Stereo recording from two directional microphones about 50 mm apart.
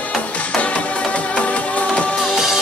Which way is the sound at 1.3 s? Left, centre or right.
Left.